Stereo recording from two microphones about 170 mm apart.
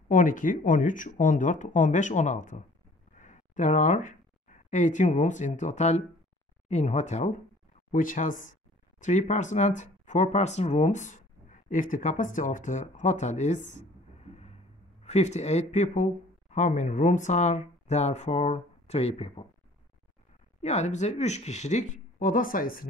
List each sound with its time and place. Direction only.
0.1 s speech: 50° left (ahead or behind)
20.6 s speech: 40° left (ahead or behind)